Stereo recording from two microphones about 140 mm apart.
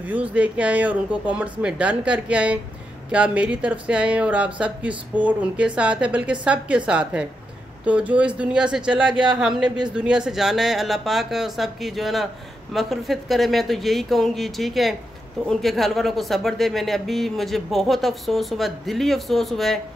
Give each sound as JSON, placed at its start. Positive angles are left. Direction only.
{"t": 0.0, "sound": "speech", "side_deg": -10}